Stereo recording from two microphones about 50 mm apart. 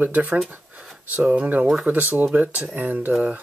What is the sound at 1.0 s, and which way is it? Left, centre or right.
Speech, right.